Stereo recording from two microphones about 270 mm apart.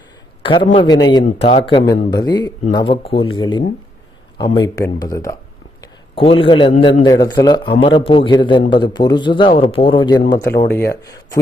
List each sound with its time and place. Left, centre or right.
0.4 s a man's voice: centre